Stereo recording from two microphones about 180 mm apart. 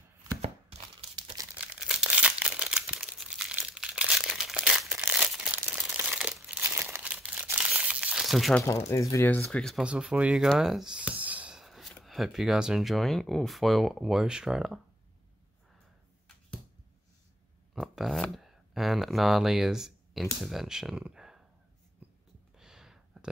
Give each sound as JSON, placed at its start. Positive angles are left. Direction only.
{"t": 0.4, "sound": "tearing", "side_deg": -30}
{"t": 1.8, "sound": "crumpling", "side_deg": -5}
{"t": 8.6, "sound": "speech", "side_deg": 15}
{"t": 17.7, "sound": "a sound", "side_deg": 0}
{"t": 20.3, "sound": "speech", "side_deg": 0}
{"t": 22.6, "sound": "a sound", "side_deg": -5}